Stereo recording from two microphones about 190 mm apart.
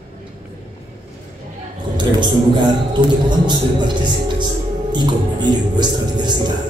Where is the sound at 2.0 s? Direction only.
25° right (ahead or behind).